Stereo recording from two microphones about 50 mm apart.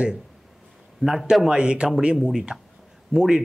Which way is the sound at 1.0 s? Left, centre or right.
Centre.